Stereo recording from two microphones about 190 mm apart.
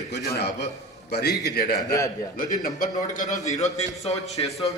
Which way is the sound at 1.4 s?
55° left (ahead or behind).